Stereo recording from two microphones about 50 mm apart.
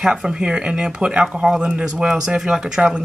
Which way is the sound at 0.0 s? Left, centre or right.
Centre.